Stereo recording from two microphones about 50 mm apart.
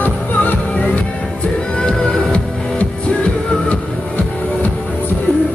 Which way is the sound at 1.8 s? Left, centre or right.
Centre.